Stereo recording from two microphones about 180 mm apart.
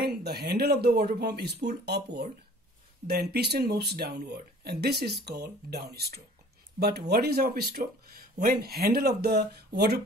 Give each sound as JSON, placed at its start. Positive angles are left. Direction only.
{"t": 0.0, "sound": "speech", "side_deg": -65}